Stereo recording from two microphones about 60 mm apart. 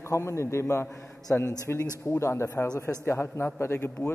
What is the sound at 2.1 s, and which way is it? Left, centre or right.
A man's voice, left.